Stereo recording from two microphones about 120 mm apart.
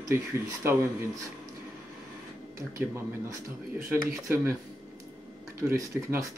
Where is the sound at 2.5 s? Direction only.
25° right (ahead or behind).